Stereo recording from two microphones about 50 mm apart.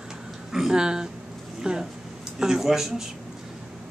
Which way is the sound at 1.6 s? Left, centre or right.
Centre.